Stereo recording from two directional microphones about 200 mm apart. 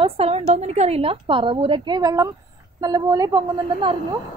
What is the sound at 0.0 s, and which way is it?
A woman's voice, 30° right (ahead or behind).